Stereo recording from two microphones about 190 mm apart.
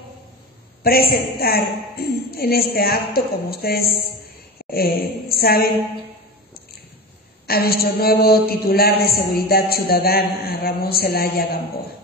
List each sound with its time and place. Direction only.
0.8 s speech: 50° left (ahead or behind)
7.4 s speech: 55° left (ahead or behind)